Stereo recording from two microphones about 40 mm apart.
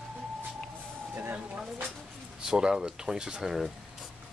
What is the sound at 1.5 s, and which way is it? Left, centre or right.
Speech, right.